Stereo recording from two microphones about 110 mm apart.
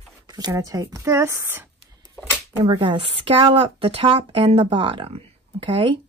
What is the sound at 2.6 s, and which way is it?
Speech, 45° right (ahead or behind).